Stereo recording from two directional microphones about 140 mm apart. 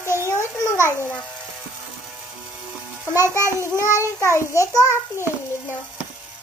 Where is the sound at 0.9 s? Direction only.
15° left (ahead or behind).